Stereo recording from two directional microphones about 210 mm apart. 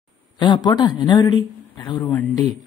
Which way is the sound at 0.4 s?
20° left (ahead or behind).